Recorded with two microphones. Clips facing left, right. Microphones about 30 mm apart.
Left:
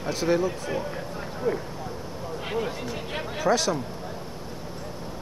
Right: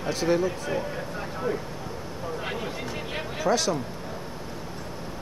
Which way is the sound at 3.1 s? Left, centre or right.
Centre.